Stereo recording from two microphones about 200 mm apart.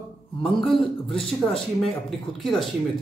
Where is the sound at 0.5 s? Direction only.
Centre (ahead or behind).